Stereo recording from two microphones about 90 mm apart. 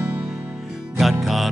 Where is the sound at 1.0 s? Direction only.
Centre (ahead or behind).